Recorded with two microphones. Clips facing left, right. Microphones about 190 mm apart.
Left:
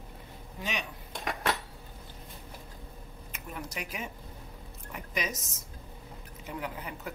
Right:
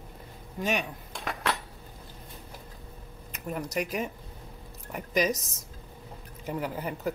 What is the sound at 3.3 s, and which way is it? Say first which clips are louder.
Speech: right 8 dB; 40° right (ahead or behind).